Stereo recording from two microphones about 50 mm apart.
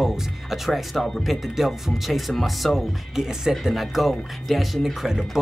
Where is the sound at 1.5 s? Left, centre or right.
Centre.